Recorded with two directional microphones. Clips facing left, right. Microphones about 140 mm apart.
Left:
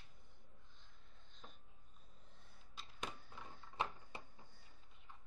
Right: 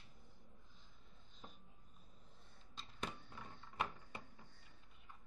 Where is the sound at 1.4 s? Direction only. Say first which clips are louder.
Right 2 dB; 5° right (ahead or behind).